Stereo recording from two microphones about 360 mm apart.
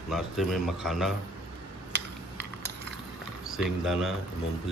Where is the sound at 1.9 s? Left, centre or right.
Right.